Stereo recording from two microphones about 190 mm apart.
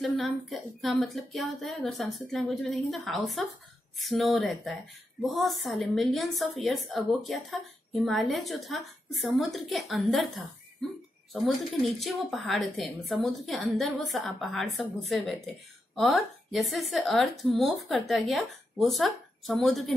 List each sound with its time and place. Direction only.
0.0 s a woman's voice: centre (ahead or behind)